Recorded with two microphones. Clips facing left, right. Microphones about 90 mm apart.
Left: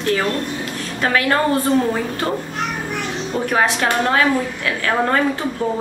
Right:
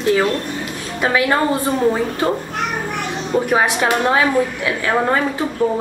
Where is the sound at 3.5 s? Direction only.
15° right (ahead or behind).